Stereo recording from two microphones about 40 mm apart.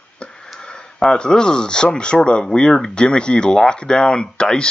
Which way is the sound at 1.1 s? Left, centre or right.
Left.